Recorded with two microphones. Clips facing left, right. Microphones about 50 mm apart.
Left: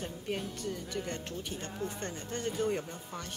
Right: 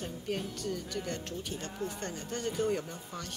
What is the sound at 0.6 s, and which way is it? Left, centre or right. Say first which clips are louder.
Speech: right 1 dB; centre.